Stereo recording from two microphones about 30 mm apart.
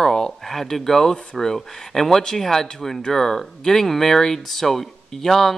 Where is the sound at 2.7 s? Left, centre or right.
Centre.